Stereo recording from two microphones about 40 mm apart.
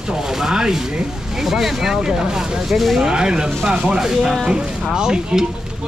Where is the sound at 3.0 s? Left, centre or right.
Centre.